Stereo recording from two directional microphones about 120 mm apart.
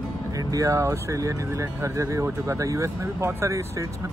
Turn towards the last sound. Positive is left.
turn(degrees=-25)  # may be behind; listen again after turning